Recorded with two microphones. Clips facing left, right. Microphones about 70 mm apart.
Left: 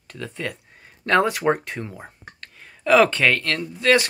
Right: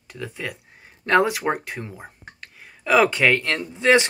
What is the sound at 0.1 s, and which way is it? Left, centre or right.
Speech, centre.